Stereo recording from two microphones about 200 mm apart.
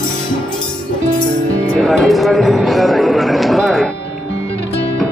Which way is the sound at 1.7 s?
Centre (ahead or behind).